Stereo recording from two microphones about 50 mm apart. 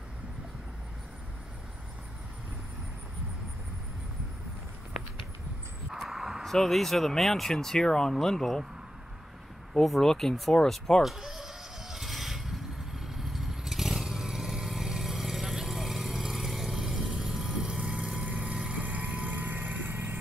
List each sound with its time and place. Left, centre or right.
5.9 s a sound: centre
6.4 s speech: centre
9.8 s speech: centre
11.0 s mechanisms: centre
13.0 s vehicle: centre; by 20.2 s right